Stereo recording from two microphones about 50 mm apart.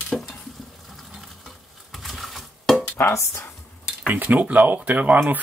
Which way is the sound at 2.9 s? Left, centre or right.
Left.